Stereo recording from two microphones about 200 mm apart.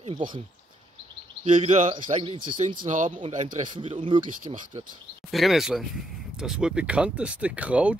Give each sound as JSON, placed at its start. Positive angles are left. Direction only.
{"t": 0.0, "sound": "speech", "side_deg": -25}
{"t": 1.4, "sound": "speech", "side_deg": -35}
{"t": 2.1, "sound": "speech", "side_deg": -25}
{"t": 3.2, "sound": "speech", "side_deg": -35}
{"t": 3.6, "sound": "speech", "side_deg": -25}
{"t": 5.3, "sound": "speech", "side_deg": 0}